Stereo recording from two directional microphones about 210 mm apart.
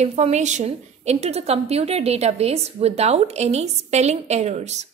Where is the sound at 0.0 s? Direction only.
30° right (ahead or behind).